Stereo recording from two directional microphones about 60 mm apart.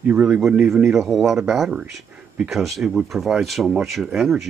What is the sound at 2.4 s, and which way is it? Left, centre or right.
Speech, centre.